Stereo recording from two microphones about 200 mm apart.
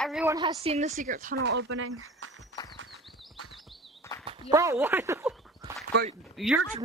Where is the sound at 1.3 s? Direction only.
70° right (ahead or behind).